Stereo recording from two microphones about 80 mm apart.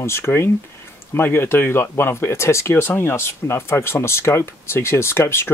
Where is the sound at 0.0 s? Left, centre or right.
Left.